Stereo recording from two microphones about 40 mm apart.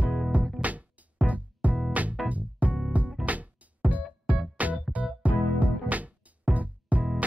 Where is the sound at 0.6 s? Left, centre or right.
Right.